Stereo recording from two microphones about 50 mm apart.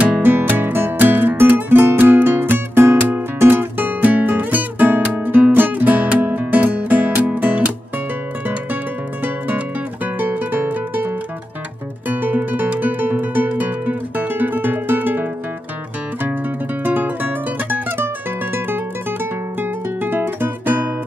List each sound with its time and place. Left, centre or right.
0.2 s music: right
10.1 s music: right
12.1 s music: right
16.8 s music: right
19.6 s guitar: right